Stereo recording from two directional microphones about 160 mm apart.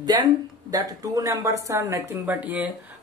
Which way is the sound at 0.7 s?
25° right (ahead or behind).